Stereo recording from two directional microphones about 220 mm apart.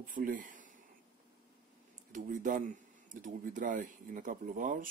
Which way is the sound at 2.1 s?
35° right (ahead or behind).